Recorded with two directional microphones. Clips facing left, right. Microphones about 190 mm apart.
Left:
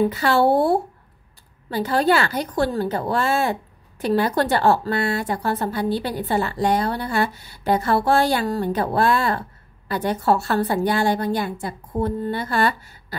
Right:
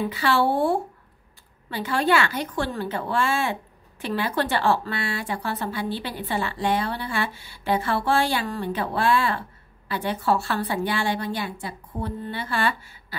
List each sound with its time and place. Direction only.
0.0 s a woman's voice: 45° left (ahead or behind)